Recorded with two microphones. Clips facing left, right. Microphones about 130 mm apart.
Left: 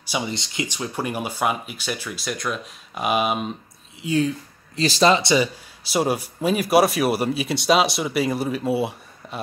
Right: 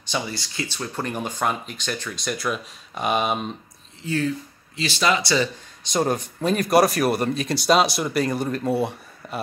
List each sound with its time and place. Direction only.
0.3 s speech: 20° left (ahead or behind); by 3.5 s 5° left (ahead or behind)
4.0 s speech: 15° left (ahead or behind)
4.7 s speech: 40° left (ahead or behind); by 5.5 s 20° left (ahead or behind)
5.9 s speech: 10° left (ahead or behind)